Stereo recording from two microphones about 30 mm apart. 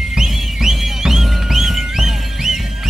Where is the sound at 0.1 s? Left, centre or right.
Centre.